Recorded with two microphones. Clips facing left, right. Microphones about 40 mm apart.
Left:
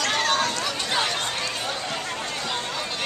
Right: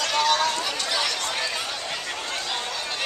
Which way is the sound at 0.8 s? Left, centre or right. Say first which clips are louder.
Left 3 dB; left.